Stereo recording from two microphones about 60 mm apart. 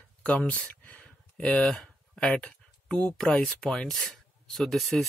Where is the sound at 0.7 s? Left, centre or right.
Left.